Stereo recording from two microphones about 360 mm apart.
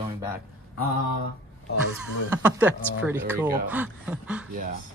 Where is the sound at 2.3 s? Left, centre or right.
Centre.